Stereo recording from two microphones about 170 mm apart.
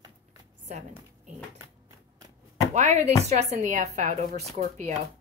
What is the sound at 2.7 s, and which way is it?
A woman's voice, 45° right (ahead or behind).